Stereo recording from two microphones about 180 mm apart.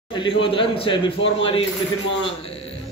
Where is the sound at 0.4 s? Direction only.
30° left (ahead or behind).